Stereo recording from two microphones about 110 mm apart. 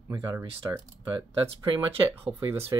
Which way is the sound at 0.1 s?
30° right (ahead or behind).